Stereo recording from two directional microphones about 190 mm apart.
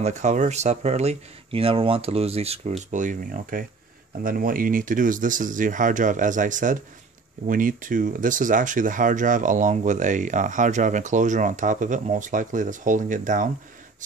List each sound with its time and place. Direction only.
0.0 s speech: 40° right (ahead or behind)